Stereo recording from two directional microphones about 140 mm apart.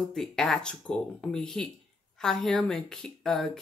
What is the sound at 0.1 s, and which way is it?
Speech, 5° left (ahead or behind).